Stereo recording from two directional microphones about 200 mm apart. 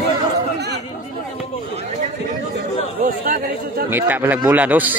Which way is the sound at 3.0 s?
45° right (ahead or behind).